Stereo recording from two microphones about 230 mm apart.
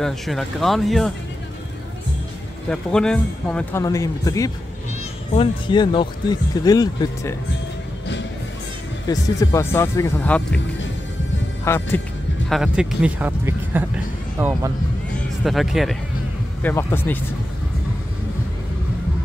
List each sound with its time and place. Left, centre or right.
0.0 s speech: centre
2.7 s speech: centre
9.0 s speech: centre
11.6 s speech: centre
12.4 s speech: centre
15.1 s speech: centre